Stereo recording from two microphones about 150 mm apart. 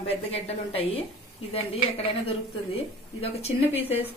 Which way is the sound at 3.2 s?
40° left (ahead or behind).